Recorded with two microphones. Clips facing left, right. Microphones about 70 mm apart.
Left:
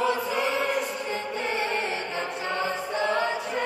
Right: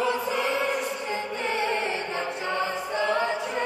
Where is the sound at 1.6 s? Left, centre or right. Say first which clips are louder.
Right 1 dB; right.